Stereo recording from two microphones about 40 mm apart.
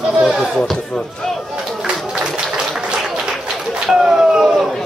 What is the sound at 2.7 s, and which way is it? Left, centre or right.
Applause, centre.